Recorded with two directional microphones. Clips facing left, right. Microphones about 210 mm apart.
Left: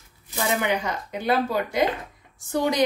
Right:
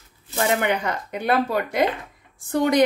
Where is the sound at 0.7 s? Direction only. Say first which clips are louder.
Right 2 dB; 60° right (ahead or behind).